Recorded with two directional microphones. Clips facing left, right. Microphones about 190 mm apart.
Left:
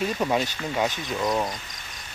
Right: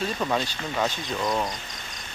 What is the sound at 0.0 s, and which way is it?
Speech, 15° left (ahead or behind).